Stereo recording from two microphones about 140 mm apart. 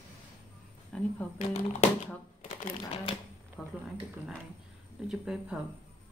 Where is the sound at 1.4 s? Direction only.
55° left (ahead or behind).